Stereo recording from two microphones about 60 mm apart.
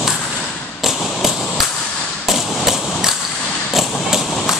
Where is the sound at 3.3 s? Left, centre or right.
Centre.